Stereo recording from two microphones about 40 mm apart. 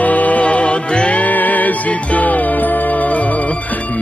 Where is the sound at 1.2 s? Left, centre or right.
Left.